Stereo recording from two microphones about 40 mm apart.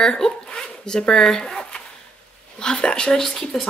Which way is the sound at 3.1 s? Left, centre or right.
Centre.